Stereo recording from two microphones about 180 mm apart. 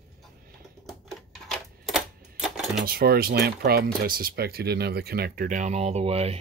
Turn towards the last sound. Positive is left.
turn(degrees=-35)  # may be behind; listen again after turning